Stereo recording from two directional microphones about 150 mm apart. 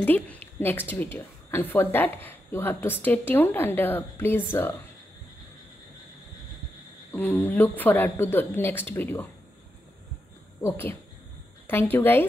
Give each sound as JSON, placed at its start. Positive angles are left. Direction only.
{"t": 0.0, "sound": "a woman's voice", "side_deg": 10}
{"t": 7.1, "sound": "a woman's voice", "side_deg": 10}
{"t": 10.6, "sound": "a woman's voice", "side_deg": 15}